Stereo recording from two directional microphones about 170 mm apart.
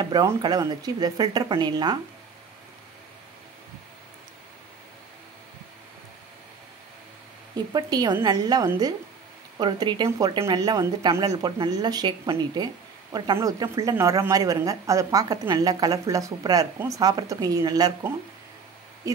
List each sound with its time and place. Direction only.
0.0 s a woman's voice: 20° right (ahead or behind)
7.5 s a woman's voice: 25° right (ahead or behind)